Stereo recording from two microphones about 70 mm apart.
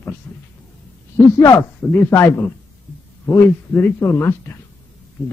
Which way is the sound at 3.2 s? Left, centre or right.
Left.